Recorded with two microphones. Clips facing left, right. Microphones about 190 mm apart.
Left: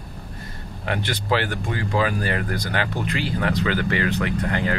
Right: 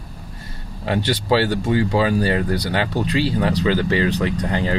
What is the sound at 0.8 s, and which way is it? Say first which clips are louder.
Speech: right 5 dB; 30° right (ahead or behind).